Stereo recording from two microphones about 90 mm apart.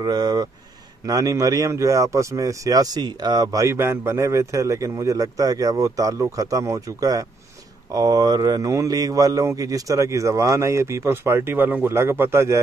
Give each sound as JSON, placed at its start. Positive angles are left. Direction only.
{"t": 0.0, "sound": "speech", "side_deg": -50}
{"t": 3.6, "sound": "speech", "side_deg": -30}